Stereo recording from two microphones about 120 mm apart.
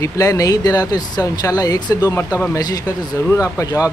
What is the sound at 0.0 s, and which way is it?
Speech, 25° left (ahead or behind).